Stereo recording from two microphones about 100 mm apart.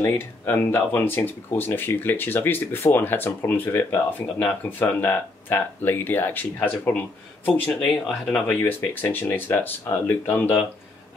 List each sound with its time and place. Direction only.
0.0 s speech: 20° left (ahead or behind)